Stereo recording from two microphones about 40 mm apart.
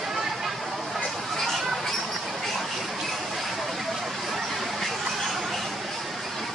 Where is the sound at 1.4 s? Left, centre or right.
Centre.